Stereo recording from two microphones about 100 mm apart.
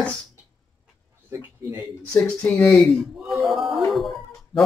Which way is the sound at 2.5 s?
25° left (ahead or behind).